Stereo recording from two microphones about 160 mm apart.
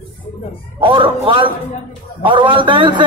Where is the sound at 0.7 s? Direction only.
35° right (ahead or behind).